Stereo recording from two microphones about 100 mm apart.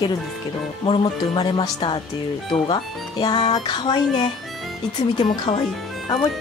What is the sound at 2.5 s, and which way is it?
Speech, 65° left (ahead or behind).